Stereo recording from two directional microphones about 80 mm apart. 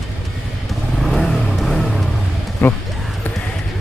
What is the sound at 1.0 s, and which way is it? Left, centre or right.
Vehicle, centre.